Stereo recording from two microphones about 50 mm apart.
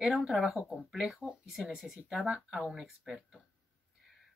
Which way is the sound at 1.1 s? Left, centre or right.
Centre.